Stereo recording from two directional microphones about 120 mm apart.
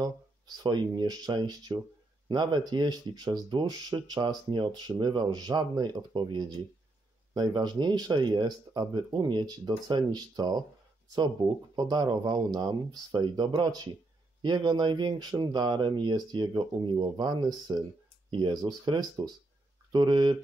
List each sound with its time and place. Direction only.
0.6 s speech: 35° right (ahead or behind)